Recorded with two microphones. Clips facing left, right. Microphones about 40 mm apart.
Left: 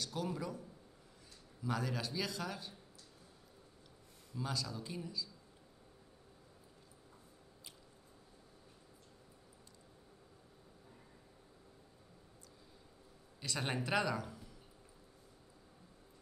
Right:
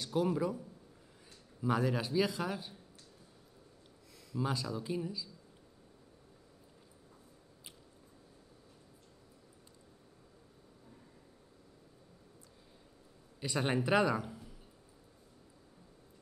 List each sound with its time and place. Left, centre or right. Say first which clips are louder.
0.0 s a man's voice: right 8 dB; centre
4.4 s a man's voice: right 5 dB; centre
13.4 s a man's voice: right 6 dB; centre